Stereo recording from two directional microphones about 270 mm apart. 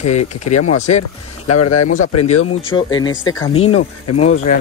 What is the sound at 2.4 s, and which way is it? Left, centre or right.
Speech, left.